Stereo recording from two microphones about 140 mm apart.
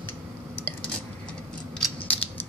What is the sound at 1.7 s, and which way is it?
Mechanisms, 10° left (ahead or behind).